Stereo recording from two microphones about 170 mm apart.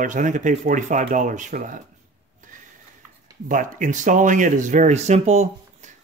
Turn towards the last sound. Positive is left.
turn(degrees=-40)  # may be behind; listen again after turning